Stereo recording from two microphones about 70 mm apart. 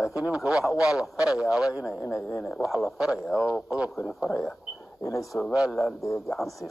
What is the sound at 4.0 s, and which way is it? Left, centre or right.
Speech, left.